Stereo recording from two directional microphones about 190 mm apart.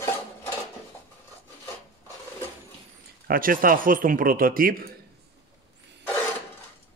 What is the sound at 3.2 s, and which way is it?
Speech, 50° right (ahead or behind).